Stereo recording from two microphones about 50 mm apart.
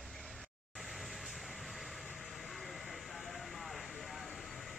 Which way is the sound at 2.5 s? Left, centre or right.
Centre.